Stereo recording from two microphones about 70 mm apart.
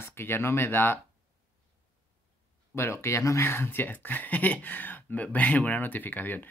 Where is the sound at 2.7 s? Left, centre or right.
Left.